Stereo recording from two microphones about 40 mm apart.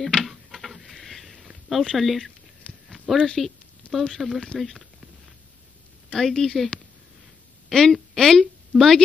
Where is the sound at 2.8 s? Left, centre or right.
Centre.